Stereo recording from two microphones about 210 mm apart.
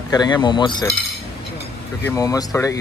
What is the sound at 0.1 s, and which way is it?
Speech, 20° left (ahead or behind).